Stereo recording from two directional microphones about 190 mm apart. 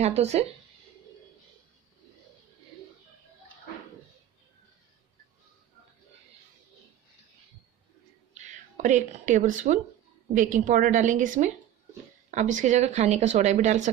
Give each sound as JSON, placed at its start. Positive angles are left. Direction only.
{"t": 0.0, "sound": "speech", "side_deg": -35}
{"t": 8.5, "sound": "a woman's voice", "side_deg": -40}